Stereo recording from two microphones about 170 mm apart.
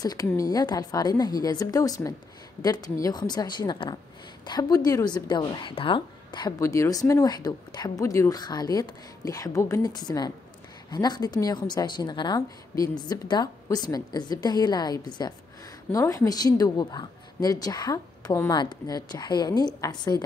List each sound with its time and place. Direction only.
0.0 s a woman's voice: 20° left (ahead or behind)